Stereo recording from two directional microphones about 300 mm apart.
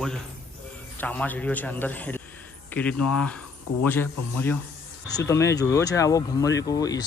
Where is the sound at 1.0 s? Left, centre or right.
Centre.